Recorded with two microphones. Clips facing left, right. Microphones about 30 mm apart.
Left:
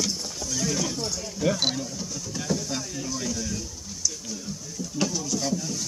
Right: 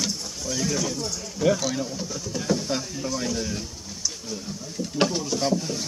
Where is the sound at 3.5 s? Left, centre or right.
Right.